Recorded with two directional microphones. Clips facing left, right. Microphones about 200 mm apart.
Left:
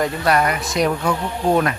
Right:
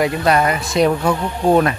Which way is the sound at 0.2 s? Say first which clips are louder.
Right 2 dB; 25° right (ahead or behind).